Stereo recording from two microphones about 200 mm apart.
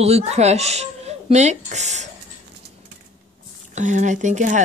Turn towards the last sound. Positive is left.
turn(degrees=-40)  # may be behind; listen again after turning